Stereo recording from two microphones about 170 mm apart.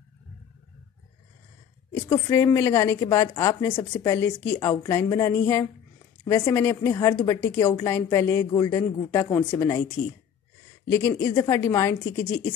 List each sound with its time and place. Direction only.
2.0 s a woman's voice: 20° left (ahead or behind)
10.9 s a woman's voice: 15° left (ahead or behind)